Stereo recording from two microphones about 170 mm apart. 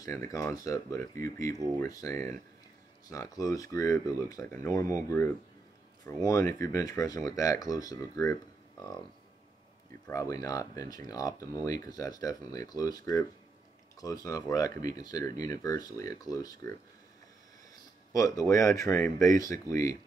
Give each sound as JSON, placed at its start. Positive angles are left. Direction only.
{"t": 0.0, "sound": "speech", "side_deg": 15}
{"t": 10.0, "sound": "speech", "side_deg": 20}
{"t": 18.1, "sound": "speech", "side_deg": 20}